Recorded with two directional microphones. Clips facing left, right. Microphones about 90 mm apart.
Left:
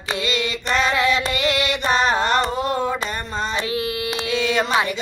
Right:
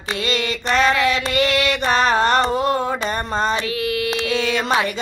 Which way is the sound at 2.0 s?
45° right (ahead or behind).